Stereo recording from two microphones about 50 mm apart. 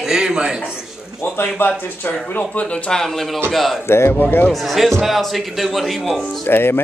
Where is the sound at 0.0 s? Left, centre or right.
Centre.